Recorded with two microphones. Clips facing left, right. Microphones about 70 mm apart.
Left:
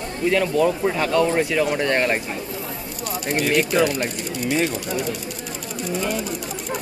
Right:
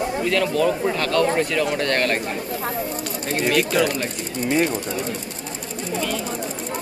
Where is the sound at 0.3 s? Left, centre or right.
Centre.